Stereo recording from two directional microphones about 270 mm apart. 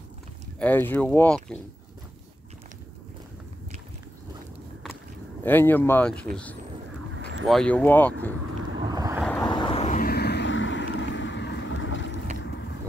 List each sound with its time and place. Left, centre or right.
0.6 s speech: centre
5.4 s speech: centre
7.4 s speech: centre
8.7 s vehicle: centre
9.2 s vehicle: centre
9.5 s vehicle: centre; by 12.2 s left